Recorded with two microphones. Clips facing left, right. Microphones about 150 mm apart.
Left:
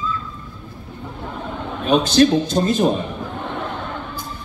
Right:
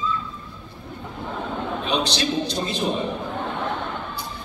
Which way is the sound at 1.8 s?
45° left (ahead or behind).